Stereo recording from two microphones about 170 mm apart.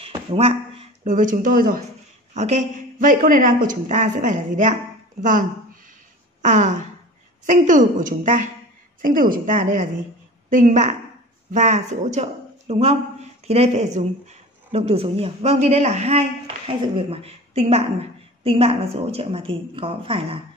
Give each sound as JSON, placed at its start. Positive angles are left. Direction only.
{"t": 0.0, "sound": "a sound", "side_deg": -35}
{"t": 1.0, "sound": "a woman's voice", "side_deg": -50}
{"t": 2.3, "sound": "a woman's voice", "side_deg": -45}
{"t": 6.4, "sound": "a woman's voice", "side_deg": -45}